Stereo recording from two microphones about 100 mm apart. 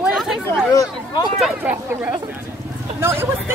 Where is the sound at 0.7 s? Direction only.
45° left (ahead or behind).